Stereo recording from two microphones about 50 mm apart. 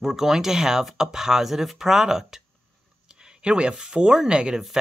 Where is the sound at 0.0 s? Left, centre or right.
Centre.